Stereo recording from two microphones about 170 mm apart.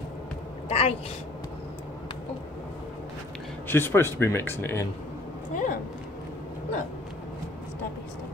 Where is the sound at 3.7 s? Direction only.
15° left (ahead or behind).